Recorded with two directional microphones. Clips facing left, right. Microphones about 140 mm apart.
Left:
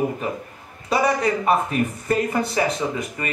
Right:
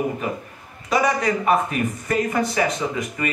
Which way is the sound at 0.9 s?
30° left (ahead or behind).